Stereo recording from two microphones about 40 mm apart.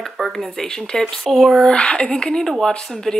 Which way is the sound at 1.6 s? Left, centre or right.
Left.